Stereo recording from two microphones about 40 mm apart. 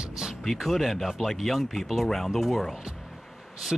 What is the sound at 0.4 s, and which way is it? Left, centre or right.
Speech, centre.